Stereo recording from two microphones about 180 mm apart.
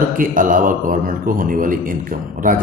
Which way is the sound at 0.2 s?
50° right (ahead or behind).